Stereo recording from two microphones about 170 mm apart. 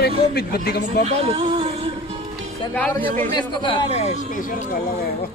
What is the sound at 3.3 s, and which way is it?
Speech, 30° left (ahead or behind).